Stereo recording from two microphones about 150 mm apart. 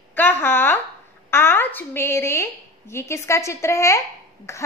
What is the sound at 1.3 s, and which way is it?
A woman's voice, 15° left (ahead or behind).